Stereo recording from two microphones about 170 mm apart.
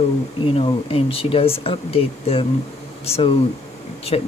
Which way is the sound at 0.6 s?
35° left (ahead or behind).